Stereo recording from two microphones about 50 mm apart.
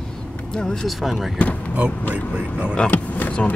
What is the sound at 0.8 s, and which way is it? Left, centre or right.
Speech, centre.